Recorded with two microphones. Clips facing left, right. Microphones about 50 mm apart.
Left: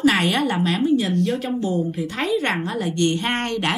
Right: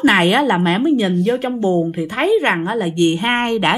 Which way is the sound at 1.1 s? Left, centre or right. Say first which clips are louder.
Right 5 dB; centre.